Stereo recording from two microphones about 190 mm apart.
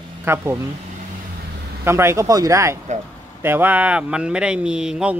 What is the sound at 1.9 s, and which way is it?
Speech, 15° right (ahead or behind).